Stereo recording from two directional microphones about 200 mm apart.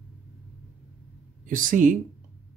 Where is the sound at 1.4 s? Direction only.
40° right (ahead or behind).